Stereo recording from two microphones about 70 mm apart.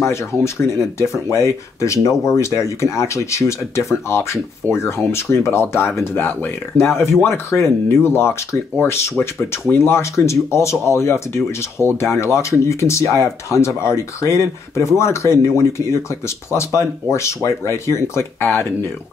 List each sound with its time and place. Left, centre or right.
0.0 s speech: left